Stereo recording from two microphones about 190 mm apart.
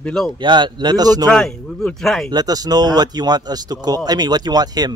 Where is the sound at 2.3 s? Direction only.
20° right (ahead or behind).